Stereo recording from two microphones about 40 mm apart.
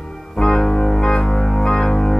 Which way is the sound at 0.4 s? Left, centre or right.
Centre.